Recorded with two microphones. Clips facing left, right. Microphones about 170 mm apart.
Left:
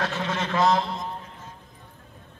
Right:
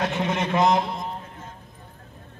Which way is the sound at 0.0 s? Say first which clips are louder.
Right 3 dB; 15° right (ahead or behind).